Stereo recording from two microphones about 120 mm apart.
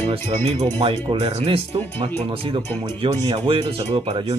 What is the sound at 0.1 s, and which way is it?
Speech, 55° right (ahead or behind).